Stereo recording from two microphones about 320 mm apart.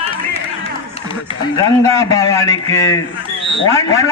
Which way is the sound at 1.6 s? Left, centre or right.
Centre.